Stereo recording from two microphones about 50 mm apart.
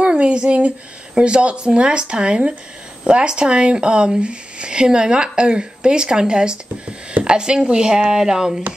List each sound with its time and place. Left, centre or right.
0.0 s speech: right